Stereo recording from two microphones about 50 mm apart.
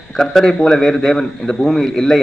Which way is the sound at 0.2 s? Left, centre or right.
Centre.